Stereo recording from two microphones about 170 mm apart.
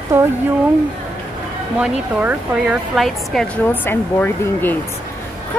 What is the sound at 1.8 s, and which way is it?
Speech, 10° right (ahead or behind).